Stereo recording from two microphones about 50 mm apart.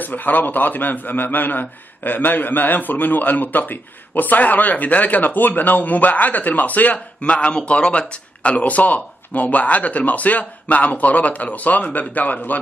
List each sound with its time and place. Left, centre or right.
0.0 s a man's voice: left